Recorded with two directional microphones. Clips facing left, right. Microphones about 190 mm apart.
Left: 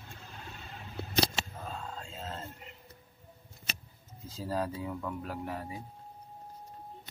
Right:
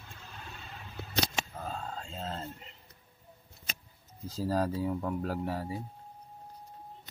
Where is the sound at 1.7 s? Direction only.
30° right (ahead or behind).